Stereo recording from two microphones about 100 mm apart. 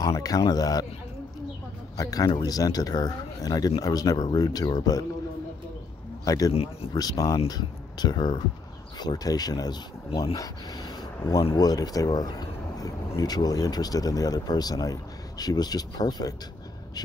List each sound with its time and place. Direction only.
0.0 s speech: 40° left (ahead or behind)
2.0 s speech: 40° left (ahead or behind)
6.2 s speech: 35° left (ahead or behind)
6.5 s speech: 85° left
6.9 s speech: 40° left (ahead or behind)
11.5 s speech: 40° left (ahead or behind)